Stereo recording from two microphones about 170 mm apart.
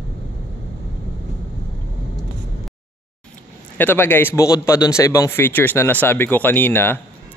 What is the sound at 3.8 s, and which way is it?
A man's voice, 10° left (ahead or behind).